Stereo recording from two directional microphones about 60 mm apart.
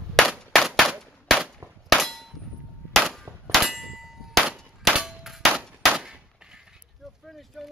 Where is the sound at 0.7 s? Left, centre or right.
Centre.